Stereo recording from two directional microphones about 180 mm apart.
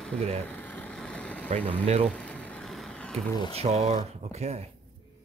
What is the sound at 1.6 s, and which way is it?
Speech, 35° right (ahead or behind).